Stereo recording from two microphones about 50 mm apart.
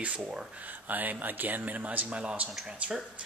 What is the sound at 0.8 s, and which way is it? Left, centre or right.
Speech, right.